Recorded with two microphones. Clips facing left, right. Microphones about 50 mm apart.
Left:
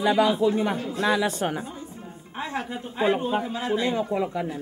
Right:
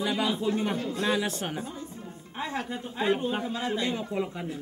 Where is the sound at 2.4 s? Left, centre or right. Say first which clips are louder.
Left 2 dB; centre.